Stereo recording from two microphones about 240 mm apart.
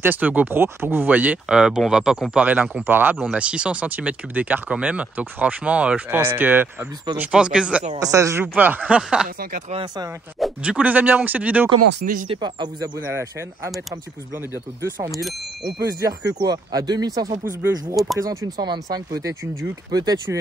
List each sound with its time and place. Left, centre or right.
0.0 s speech: centre
9.4 s speech: right
10.4 s speech: centre
11.9 s speech: right
12.3 s speech: centre
15.0 s speech: centre
15.8 s speech: centre
17.9 s speech: centre
18.2 s speech: centre